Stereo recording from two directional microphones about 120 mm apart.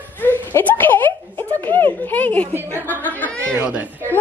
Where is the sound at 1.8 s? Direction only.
15° left (ahead or behind).